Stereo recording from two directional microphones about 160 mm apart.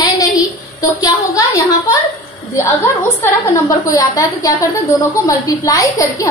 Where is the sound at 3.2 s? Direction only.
20° left (ahead or behind).